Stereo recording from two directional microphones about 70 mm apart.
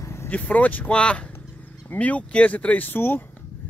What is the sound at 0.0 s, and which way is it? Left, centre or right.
Vehicle, left.